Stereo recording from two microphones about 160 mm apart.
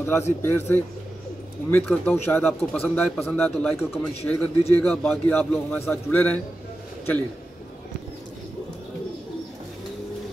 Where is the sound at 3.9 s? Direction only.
15° left (ahead or behind).